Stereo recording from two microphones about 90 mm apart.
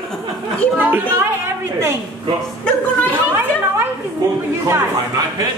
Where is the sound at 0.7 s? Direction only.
20° right (ahead or behind).